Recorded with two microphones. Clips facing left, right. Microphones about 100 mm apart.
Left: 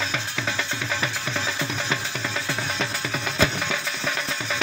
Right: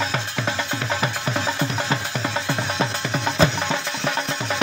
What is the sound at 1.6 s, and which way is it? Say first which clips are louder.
Music: right 4 dB; 35° right (ahead or behind).